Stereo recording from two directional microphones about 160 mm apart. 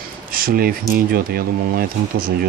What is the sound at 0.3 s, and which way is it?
Speech, 65° right (ahead or behind).